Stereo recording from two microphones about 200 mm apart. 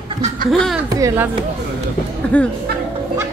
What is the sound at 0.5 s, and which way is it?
Speech, centre (ahead or behind).